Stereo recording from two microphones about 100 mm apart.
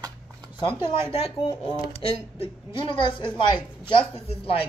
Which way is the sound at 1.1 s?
70° left (ahead or behind).